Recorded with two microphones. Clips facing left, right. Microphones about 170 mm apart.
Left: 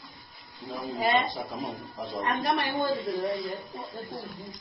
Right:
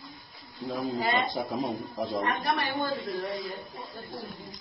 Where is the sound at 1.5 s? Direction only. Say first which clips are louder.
Right 4 dB; centre (ahead or behind).